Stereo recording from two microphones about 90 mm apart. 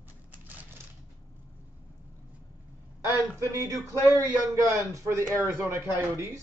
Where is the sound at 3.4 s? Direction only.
30° right (ahead or behind).